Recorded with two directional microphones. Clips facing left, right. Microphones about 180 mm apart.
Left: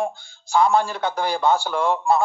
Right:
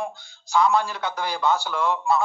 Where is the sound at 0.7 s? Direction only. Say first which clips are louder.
Left 3 dB; 30° left (ahead or behind).